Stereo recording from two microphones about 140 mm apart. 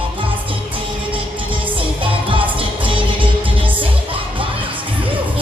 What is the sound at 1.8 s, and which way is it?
Music, 40° right (ahead or behind).